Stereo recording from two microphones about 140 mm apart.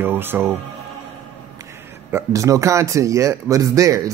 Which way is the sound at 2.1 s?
20° right (ahead or behind).